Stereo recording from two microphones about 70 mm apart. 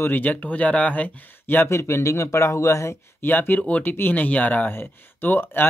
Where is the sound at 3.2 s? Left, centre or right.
Left.